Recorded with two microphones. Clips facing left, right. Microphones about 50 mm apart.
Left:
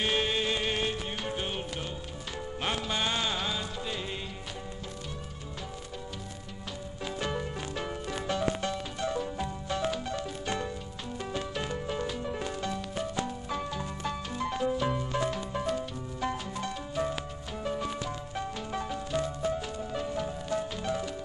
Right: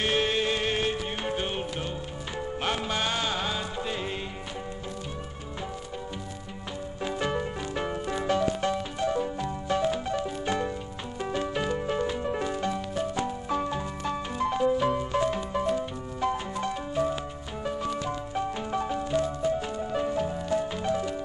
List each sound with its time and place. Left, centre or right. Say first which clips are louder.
0.0 s music: right 3 dB; centre
7.0 s music: right 4 dB; centre
8.1 s music: right 6 dB; right
8.5 s music: right 5 dB; centre
18.0 s music: right 5 dB; centre